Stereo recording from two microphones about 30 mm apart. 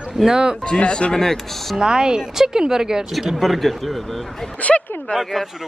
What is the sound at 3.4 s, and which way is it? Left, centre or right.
Speech, centre.